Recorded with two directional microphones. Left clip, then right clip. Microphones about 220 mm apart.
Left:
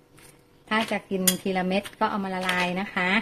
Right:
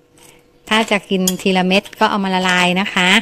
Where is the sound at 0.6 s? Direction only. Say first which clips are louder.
Right 11 dB; 45° right (ahead or behind).